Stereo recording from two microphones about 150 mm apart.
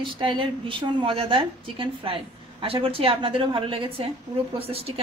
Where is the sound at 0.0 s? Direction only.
35° right (ahead or behind).